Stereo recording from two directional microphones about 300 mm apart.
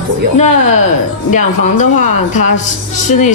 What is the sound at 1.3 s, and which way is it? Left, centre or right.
Speech, left.